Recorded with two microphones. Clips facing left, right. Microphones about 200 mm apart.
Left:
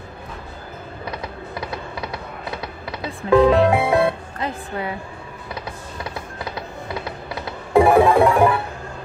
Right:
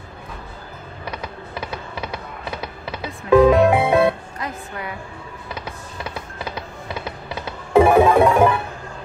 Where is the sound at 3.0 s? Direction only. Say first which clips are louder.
Right 2 dB; 30° left (ahead or behind).